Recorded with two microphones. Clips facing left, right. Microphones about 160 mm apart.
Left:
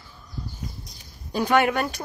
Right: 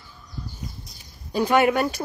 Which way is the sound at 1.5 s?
10° right (ahead or behind).